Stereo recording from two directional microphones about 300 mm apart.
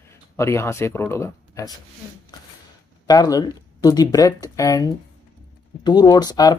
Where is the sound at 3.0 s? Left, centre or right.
Centre.